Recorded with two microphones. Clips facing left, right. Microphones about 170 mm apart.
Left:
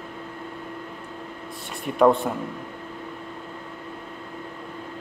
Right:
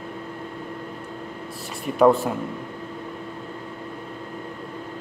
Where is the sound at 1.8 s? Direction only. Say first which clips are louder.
Right 1 dB; centre (ahead or behind).